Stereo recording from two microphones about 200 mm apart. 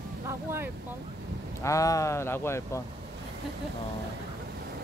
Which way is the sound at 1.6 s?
15° left (ahead or behind).